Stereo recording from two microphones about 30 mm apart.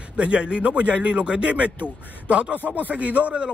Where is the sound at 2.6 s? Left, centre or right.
Right.